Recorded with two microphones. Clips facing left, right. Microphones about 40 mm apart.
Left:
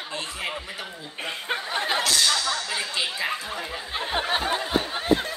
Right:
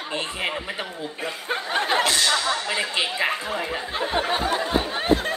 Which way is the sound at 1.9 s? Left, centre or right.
Right.